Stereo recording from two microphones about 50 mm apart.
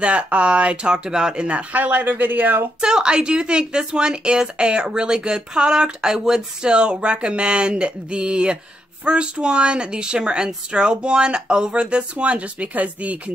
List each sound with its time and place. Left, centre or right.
0.0 s a woman's voice: right
1.7 s speech: right
2.8 s a woman's voice: centre